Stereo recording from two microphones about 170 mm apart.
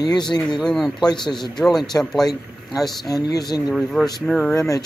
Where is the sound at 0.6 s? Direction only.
Centre (ahead or behind).